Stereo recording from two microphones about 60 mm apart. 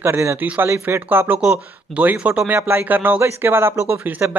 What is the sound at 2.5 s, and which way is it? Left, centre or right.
Speech, right.